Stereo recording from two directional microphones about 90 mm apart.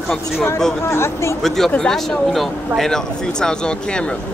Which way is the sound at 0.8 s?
30° left (ahead or behind).